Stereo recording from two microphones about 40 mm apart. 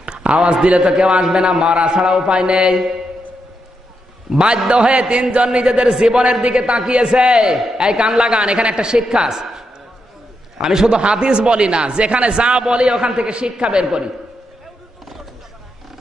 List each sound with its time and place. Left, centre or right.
0.0 s a sound: right
1.1 s a man's voice: centre
2.6 s speech: centre
4.3 s a man's voice: right